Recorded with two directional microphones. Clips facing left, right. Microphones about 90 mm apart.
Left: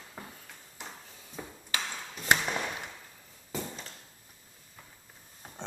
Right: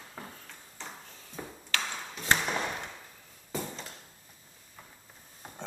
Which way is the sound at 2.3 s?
10° right (ahead or behind).